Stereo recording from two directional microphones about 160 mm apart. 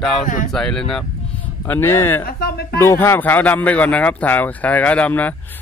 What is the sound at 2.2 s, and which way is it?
Speech, 70° left (ahead or behind).